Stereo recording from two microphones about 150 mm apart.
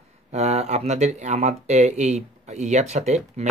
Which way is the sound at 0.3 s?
50° right (ahead or behind).